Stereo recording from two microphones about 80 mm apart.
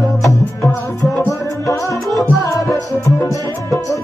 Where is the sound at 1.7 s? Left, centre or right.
Left.